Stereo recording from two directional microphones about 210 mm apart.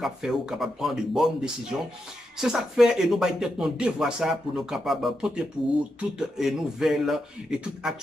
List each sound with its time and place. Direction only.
0.0 s speech: 5° right (ahead or behind)